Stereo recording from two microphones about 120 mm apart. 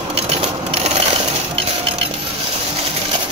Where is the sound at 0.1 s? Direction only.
50° right (ahead or behind).